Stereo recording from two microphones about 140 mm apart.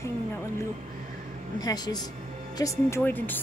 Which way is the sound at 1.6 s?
30° left (ahead or behind).